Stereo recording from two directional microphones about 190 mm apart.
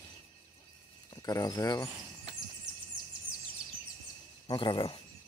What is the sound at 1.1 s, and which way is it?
Speech, 20° left (ahead or behind).